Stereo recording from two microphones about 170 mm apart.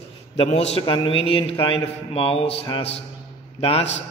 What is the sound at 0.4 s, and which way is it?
A man's voice, 35° left (ahead or behind).